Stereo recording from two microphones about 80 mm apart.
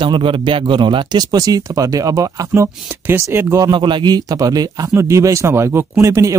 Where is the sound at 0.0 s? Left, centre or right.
Right.